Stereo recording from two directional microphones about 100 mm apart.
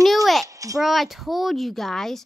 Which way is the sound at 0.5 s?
35° right (ahead or behind).